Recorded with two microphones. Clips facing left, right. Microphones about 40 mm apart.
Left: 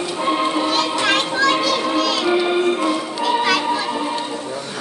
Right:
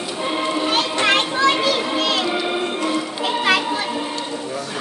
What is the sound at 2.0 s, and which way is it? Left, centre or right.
Music, right.